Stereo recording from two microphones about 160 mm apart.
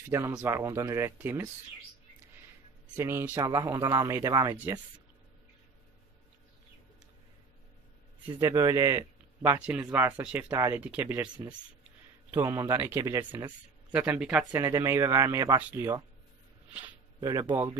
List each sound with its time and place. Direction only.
0.1 s speech: 20° right (ahead or behind)
3.0 s speech: 15° right (ahead or behind)
8.4 s speech: 20° right (ahead or behind)
9.4 s speech: 10° right (ahead or behind)
12.3 s speech: 20° right (ahead or behind)
14.5 s speech: 20° right (ahead or behind)
17.2 s speech: 30° right (ahead or behind)